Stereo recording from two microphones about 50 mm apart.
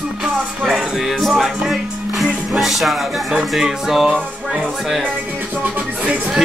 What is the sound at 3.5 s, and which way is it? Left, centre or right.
Speech, centre.